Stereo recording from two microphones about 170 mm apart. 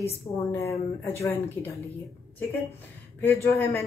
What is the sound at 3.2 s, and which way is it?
Speech, 15° left (ahead or behind).